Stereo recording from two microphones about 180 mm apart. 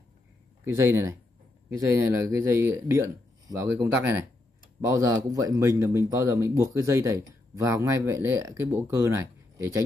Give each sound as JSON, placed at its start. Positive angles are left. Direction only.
{"t": 0.7, "sound": "speech", "side_deg": -15}